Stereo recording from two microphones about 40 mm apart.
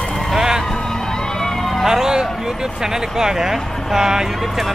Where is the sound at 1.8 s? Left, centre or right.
Centre.